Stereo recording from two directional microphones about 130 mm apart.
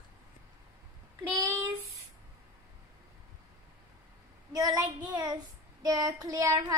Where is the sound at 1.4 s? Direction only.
20° right (ahead or behind).